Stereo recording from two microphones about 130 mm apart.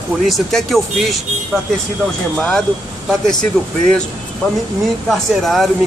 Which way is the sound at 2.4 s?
5° left (ahead or behind).